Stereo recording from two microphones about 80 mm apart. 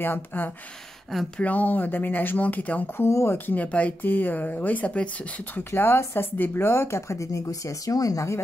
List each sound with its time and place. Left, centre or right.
0.0 s speech: left
3.1 s speech: left
3.4 s speech: centre; by 8.4 s left